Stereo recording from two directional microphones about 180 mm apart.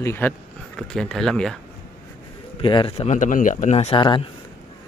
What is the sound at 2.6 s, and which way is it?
Speech, 30° left (ahead or behind).